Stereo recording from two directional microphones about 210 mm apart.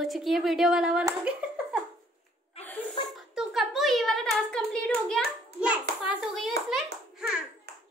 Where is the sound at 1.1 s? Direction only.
5° right (ahead or behind).